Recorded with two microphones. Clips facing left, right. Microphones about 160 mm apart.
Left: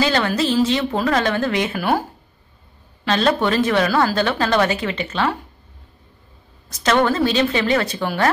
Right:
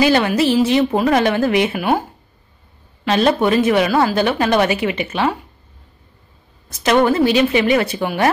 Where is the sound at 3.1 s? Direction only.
15° right (ahead or behind).